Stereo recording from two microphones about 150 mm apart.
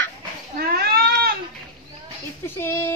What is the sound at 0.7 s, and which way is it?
Goat, 90° right.